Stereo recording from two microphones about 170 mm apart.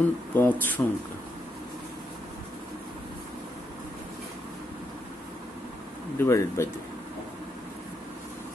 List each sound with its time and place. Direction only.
0.0 s speech: 10° left (ahead or behind)
6.1 s speech: 15° left (ahead or behind)